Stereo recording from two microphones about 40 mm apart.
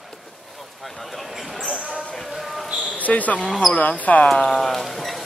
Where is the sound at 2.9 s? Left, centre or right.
Left.